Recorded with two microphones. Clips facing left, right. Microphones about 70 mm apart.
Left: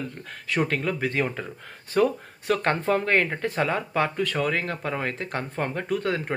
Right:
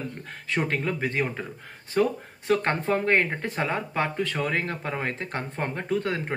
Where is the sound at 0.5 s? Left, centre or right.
Right.